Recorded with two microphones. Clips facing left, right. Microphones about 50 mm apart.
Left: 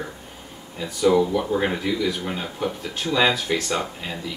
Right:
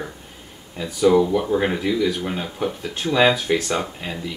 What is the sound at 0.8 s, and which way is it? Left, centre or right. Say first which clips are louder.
Speech: right 2 dB; centre.